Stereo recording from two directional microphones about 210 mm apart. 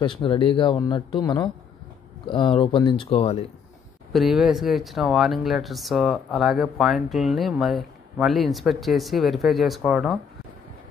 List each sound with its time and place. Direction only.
0.0 s speech: 25° left (ahead or behind)
4.1 s speech: centre (ahead or behind)